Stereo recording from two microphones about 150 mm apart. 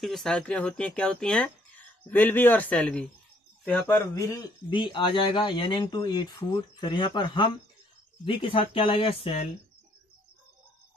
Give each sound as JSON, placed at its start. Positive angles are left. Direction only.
{"t": 0.0, "sound": "speech", "side_deg": 0}